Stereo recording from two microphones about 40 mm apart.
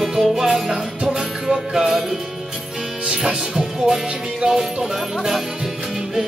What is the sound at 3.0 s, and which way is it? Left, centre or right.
Speech, right.